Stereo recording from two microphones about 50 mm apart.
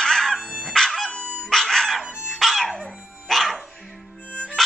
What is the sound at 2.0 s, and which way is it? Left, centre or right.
Dog, centre.